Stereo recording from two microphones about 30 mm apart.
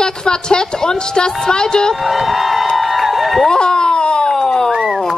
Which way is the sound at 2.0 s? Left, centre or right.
Centre.